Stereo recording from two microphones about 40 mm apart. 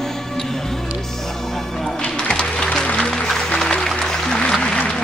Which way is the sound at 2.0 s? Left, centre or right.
Left.